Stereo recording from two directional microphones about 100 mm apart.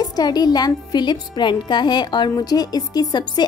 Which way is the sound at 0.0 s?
40° left (ahead or behind).